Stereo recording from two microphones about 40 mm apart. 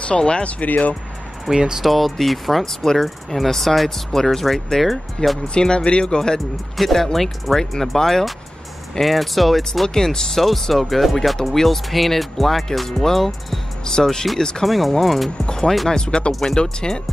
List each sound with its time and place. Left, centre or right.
0.0 s speech: left
1.5 s speech: centre
1.8 s speech: centre
2.6 s speech: centre
5.5 s speech: centre
6.8 s speech: centre
9.8 s speech: centre
14.7 s speech: centre
15.4 s music: centre
15.9 s speech: left
16.3 s speech: centre
16.8 s speech: centre